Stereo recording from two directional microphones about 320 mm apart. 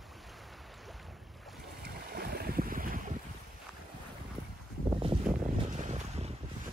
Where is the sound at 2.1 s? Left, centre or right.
Right.